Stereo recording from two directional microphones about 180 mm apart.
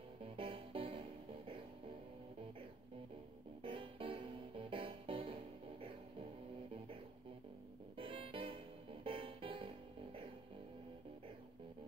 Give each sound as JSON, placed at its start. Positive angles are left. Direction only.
{"t": 0.2, "sound": "music", "side_deg": -30}
{"t": 3.6, "sound": "music", "side_deg": -30}
{"t": 8.0, "sound": "music", "side_deg": -30}